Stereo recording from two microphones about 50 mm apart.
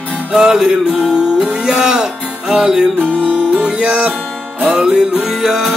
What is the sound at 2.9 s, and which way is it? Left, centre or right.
Music, right.